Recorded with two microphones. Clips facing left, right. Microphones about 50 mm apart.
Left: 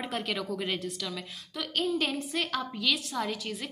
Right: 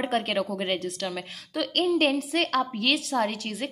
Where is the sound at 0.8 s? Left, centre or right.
Right.